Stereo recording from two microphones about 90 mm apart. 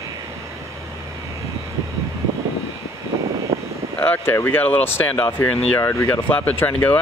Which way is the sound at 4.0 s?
20° left (ahead or behind).